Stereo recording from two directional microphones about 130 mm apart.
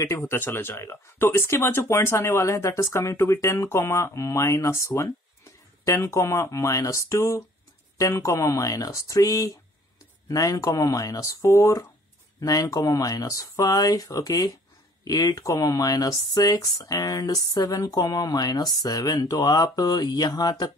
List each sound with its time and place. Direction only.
0.0 s speech: 20° left (ahead or behind)